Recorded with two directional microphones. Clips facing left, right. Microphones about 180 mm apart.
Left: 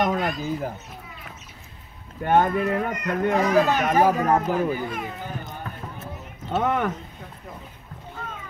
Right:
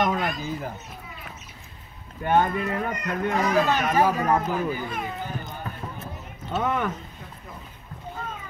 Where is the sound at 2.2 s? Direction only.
50° left (ahead or behind).